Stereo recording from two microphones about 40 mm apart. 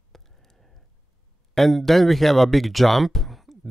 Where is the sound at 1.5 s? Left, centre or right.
Centre.